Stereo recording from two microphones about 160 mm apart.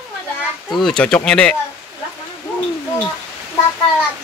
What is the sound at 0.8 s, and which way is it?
Speech, 5° left (ahead or behind).